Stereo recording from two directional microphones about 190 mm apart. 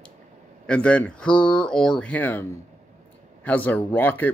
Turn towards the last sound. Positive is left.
turn(degrees=10)  # may be behind; listen again after turning